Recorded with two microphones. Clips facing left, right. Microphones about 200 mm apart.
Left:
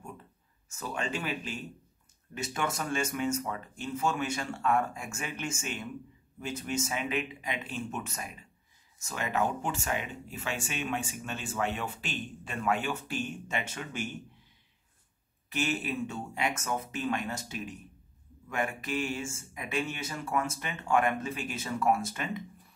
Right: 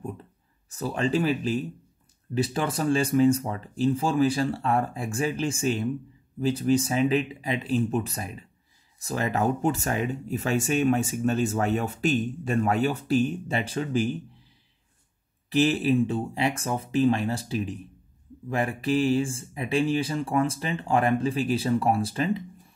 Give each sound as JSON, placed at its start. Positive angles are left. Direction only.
{"t": 0.7, "sound": "speech", "side_deg": -35}
{"t": 15.5, "sound": "speech", "side_deg": -30}